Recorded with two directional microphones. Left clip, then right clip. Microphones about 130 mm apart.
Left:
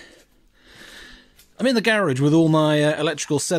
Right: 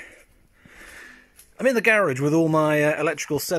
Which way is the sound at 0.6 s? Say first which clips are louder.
Left 1 dB; 20° left (ahead or behind).